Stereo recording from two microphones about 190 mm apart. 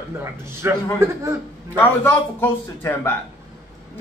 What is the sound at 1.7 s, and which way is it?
A man's voice, 10° left (ahead or behind).